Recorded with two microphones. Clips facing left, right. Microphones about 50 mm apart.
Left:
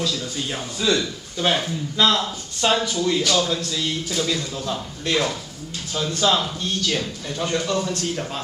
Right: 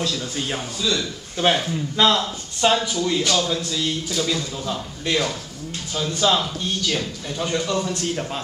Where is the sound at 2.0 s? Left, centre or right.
Right.